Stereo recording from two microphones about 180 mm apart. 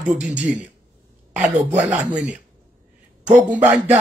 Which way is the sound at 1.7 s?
10° right (ahead or behind).